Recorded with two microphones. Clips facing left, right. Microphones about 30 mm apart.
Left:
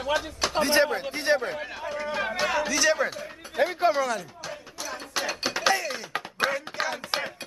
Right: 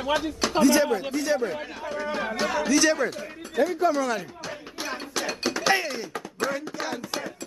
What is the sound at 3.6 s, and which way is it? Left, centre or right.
Speech, left.